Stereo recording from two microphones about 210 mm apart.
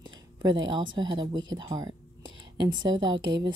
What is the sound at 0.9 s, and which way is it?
Speech, 20° right (ahead or behind).